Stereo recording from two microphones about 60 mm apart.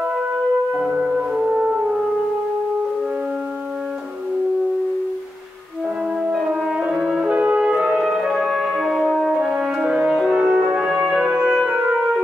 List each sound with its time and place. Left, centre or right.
0.7 s music: centre
6.5 s french horn: centre
7.3 s french horn: right
7.9 s music: centre
8.7 s french horn: centre
9.6 s french horn: centre
11.0 s music: centre